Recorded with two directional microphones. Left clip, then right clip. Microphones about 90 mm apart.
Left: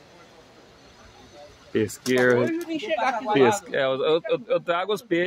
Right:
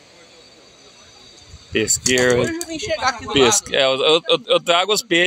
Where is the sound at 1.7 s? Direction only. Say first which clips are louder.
Right 6 dB; 10° right (ahead or behind).